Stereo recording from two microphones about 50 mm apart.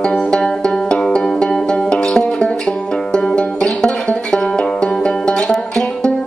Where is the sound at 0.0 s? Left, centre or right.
Centre.